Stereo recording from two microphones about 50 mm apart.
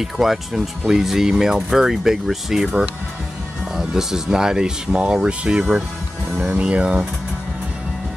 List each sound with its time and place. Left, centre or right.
0.0 s speech: centre
3.7 s speech: centre